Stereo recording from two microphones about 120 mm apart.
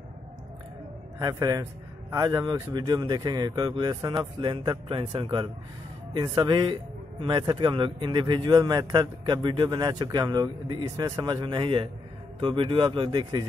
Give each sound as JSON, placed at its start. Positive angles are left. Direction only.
{"t": 1.2, "sound": "a man's voice", "side_deg": -30}